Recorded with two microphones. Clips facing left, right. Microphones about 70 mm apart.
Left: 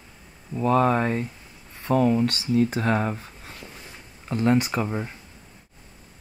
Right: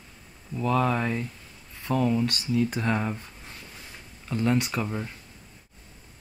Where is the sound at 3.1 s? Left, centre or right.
Centre.